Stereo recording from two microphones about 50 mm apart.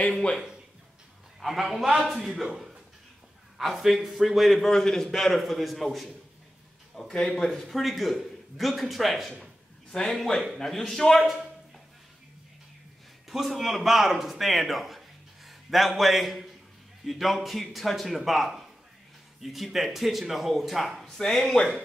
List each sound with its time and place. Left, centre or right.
0.1 s speech: centre
1.4 s a man's voice: centre
7.0 s a man's voice: centre
13.3 s a man's voice: centre
21.2 s speech: centre